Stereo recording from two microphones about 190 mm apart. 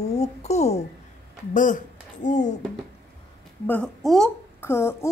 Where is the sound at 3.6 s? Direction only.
5° left (ahead or behind).